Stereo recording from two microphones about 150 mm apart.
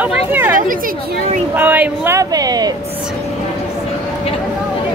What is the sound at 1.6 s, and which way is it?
Speech, 15° right (ahead or behind).